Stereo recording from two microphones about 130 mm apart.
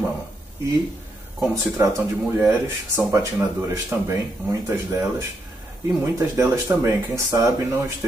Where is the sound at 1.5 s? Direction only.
20° right (ahead or behind).